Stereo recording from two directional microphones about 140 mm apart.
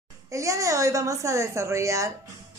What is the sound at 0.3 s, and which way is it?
A woman's voice, 20° right (ahead or behind).